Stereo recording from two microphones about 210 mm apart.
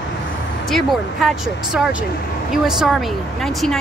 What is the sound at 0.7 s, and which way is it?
Speech, centre (ahead or behind).